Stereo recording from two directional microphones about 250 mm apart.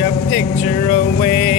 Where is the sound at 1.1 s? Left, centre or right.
Left.